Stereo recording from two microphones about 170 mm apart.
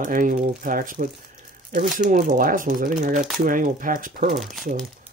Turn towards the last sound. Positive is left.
turn(degrees=0)  # may be behind; listen again after turning